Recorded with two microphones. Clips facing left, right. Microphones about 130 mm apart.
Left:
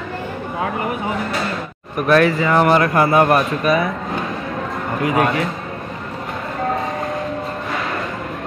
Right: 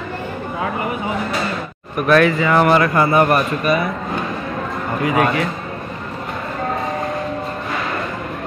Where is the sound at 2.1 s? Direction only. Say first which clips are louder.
Even; 30° left (ahead or behind).